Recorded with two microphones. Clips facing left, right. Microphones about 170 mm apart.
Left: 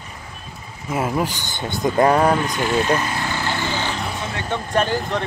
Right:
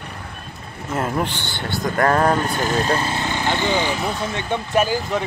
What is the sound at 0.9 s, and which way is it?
Speech, 5° left (ahead or behind).